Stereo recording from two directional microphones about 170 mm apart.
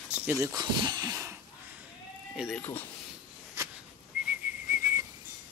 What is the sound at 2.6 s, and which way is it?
Speech, 10° left (ahead or behind).